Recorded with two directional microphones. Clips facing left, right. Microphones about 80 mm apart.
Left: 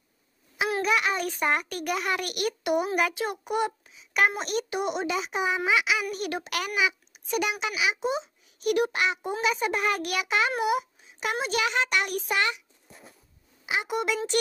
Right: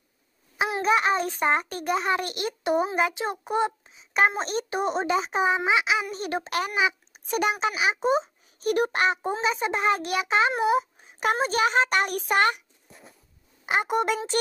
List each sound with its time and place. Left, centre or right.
0.6 s a sound: right
0.9 s a child's voice: right
11.0 s a child's voice: right
13.7 s a woman's voice: right